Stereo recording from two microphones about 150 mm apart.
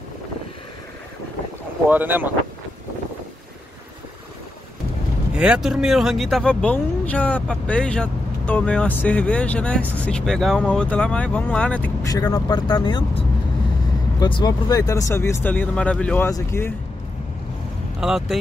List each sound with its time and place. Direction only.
1.9 s speech: 10° right (ahead or behind)
5.3 s speech: 5° right (ahead or behind)
12.0 s speech: 25° left (ahead or behind)
14.2 s speech: 25° left (ahead or behind); by 16.3 s 10° left (ahead or behind)
16.3 s speech: 20° left (ahead or behind)
18.0 s speech: centre (ahead or behind)